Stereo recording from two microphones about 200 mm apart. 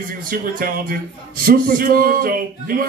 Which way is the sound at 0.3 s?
45° right (ahead or behind).